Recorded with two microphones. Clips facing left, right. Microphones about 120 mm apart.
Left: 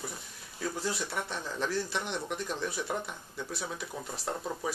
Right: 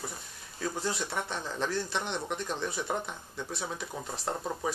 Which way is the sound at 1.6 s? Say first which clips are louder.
Even; 5° left (ahead or behind).